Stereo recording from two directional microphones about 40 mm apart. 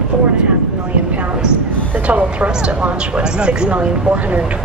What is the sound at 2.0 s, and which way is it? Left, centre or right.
A woman's voice, right.